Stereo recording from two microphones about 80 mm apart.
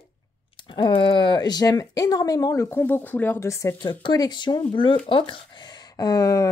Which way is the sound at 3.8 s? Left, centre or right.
Left.